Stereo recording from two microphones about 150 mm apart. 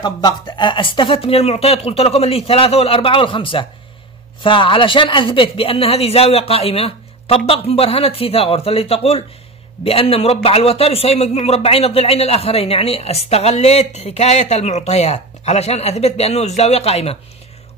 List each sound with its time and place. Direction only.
0.0 s a man's voice: 30° left (ahead or behind)